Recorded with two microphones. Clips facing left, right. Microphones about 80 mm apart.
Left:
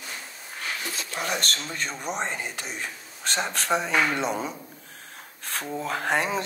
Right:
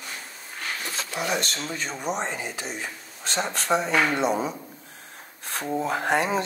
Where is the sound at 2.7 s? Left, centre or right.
Left.